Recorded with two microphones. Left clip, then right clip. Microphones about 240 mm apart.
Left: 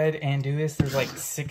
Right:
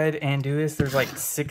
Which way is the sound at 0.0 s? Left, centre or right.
Centre.